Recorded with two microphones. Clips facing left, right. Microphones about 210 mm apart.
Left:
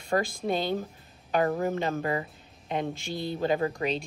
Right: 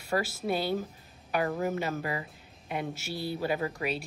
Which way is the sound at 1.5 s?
35° left (ahead or behind).